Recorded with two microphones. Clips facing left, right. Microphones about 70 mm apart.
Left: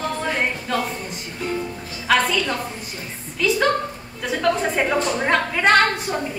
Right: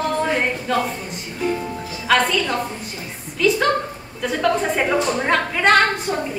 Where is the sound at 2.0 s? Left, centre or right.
Centre.